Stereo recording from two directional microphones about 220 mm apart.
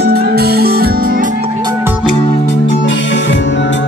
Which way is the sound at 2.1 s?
25° left (ahead or behind).